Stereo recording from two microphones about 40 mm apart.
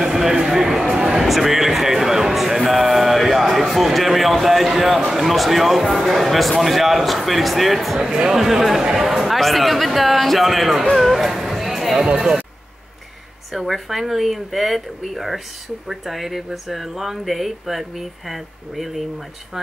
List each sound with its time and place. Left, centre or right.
0.0 s a sound: centre
1.2 s speech: centre
8.0 s speech: centre
11.6 s music: centre
12.2 s speech: centre
13.5 s speech: centre